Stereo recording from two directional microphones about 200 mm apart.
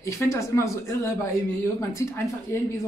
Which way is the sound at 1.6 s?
15° left (ahead or behind).